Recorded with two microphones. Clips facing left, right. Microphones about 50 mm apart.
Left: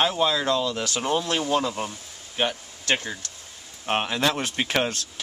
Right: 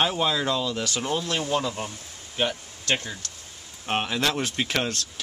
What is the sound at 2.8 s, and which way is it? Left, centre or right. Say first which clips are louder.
Speech: left 1 dB; left.